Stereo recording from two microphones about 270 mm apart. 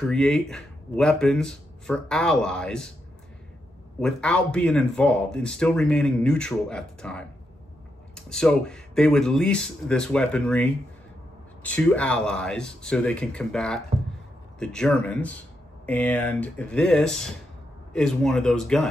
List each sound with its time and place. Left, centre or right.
0.1 s speech: centre
4.0 s speech: centre